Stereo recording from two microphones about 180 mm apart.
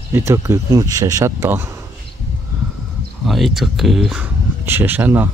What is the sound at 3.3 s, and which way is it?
Speech, centre (ahead or behind).